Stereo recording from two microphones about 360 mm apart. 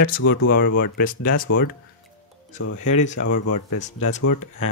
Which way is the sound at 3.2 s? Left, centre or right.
Left.